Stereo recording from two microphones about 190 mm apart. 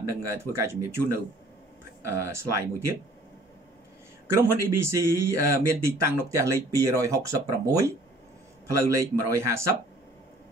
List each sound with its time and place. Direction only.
0.0 s speech: 15° right (ahead or behind)
4.4 s speech: 15° right (ahead or behind)